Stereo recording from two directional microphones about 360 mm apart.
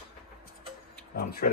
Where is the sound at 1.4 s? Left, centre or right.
Left.